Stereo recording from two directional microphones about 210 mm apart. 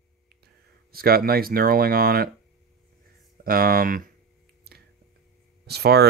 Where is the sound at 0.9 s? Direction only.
45° right (ahead or behind).